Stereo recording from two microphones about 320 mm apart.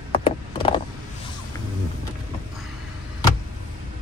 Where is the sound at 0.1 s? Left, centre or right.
Centre.